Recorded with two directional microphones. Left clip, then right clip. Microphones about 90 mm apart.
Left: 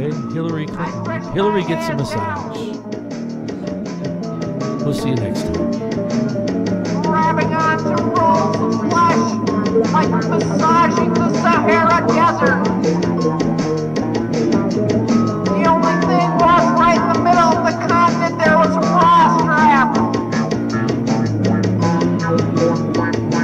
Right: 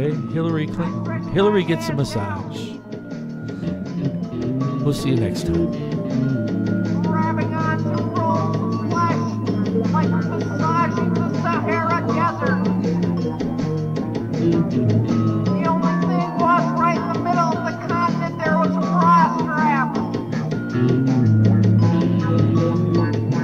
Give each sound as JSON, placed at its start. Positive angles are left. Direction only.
{"t": 1.3, "sound": "speech", "side_deg": 0}
{"t": 4.8, "sound": "speech", "side_deg": 0}
{"t": 7.0, "sound": "music", "side_deg": -35}